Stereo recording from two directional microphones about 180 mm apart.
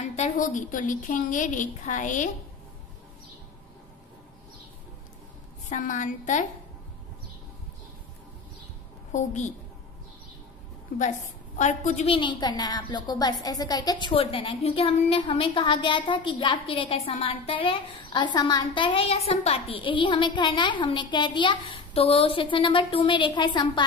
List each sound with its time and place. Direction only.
0.0 s a woman's voice: 40° left (ahead or behind)
5.7 s a woman's voice: 45° left (ahead or behind)
9.1 s a woman's voice: 40° left (ahead or behind)
11.0 s a woman's voice: 40° left (ahead or behind); by 23.8 s 25° left (ahead or behind)